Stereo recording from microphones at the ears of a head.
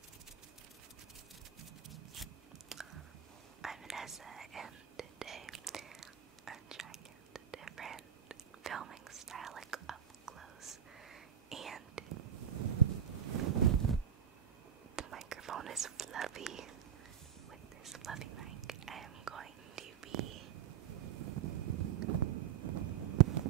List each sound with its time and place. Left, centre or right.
4.1 s whispering: right
15.0 s whispering: right